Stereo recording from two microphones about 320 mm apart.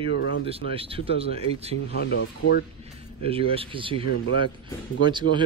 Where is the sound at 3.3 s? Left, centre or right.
Centre.